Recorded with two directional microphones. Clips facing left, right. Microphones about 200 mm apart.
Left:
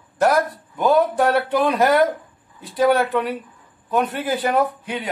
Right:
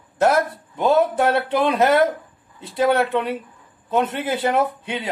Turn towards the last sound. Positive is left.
turn(degrees=-25)  # may be behind; listen again after turning